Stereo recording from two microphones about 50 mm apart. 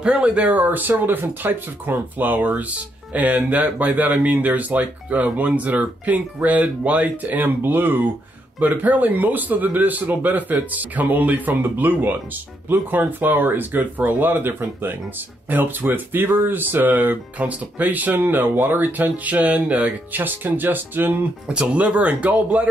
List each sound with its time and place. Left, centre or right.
0.0 s speech: centre; by 8.0 s right
8.5 s speech: right
21.5 s speech: right